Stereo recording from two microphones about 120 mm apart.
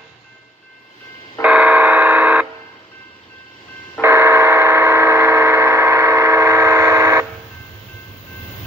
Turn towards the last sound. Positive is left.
turn(degrees=-25)  # may be behind; listen again after turning